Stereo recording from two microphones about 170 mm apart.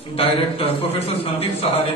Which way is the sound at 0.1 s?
35° left (ahead or behind).